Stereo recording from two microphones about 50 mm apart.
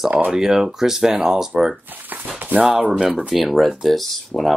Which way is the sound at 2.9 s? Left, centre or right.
Centre.